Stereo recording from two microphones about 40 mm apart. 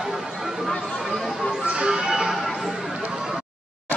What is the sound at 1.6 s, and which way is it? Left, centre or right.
Music, right.